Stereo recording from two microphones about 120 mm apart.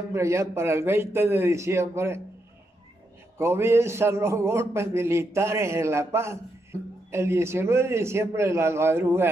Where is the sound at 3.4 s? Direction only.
20° right (ahead or behind).